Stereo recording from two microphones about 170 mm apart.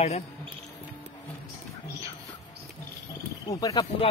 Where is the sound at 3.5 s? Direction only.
20° left (ahead or behind).